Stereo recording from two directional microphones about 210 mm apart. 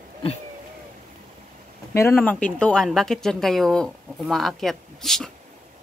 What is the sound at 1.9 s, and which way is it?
Speech, 10° left (ahead or behind).